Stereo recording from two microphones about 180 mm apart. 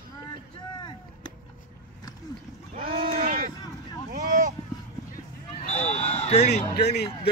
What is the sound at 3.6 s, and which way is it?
Speech, 20° left (ahead or behind).